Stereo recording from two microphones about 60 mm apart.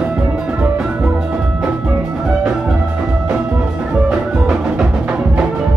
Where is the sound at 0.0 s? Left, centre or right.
Right.